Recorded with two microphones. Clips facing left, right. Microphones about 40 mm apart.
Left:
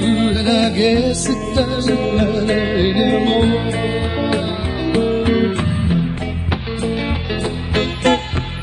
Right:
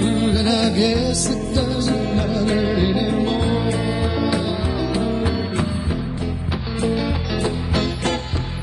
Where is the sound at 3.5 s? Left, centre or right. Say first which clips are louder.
Left 2 dB; left.